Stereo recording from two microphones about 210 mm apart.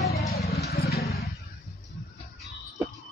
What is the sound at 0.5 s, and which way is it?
Vehicle, 50° left (ahead or behind).